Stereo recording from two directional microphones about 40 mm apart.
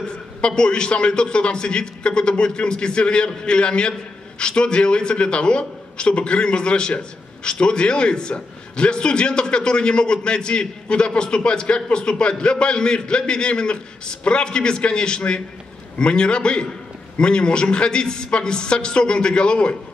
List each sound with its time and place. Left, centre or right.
0.4 s a man's voice: left